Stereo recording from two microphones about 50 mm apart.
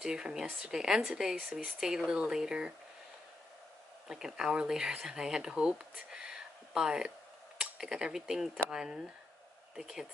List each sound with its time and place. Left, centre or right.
0.0 s speech: centre
4.1 s speech: centre